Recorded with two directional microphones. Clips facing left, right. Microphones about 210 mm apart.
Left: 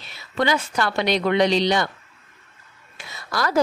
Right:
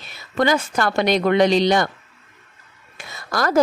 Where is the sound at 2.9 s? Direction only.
50° right (ahead or behind).